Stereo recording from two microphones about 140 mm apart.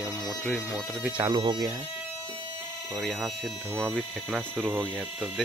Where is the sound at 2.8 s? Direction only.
Centre (ahead or behind).